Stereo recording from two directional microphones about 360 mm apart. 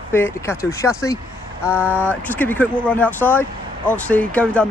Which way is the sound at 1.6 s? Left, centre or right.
Centre.